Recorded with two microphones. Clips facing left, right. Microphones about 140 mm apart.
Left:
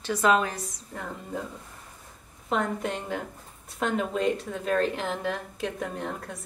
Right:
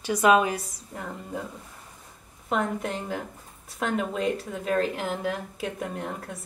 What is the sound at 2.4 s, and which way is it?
A woman's voice, 5° right (ahead or behind).